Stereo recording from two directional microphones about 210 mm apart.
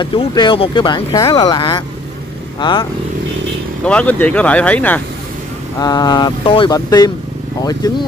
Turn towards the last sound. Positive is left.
turn(degrees=20)  # may be behind; listen again after turning